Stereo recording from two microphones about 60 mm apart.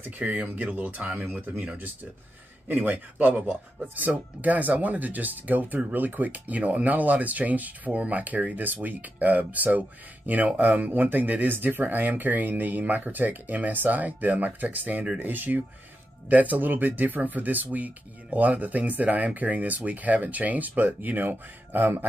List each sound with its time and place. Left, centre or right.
0.2 s speech: right
2.7 s speech: right